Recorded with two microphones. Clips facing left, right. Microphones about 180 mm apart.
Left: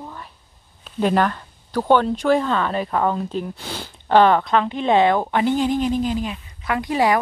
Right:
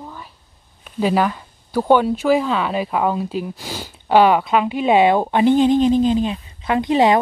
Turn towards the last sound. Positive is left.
turn(degrees=-20)  # may be behind; listen again after turning